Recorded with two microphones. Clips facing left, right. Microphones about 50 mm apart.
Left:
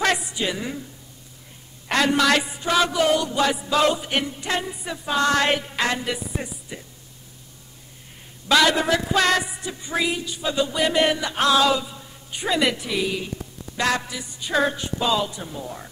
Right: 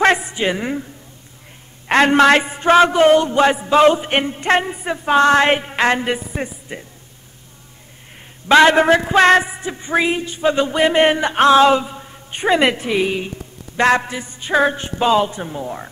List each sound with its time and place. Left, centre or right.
0.0 s a sound: right
1.9 s a man's voice: right
8.5 s a man's voice: right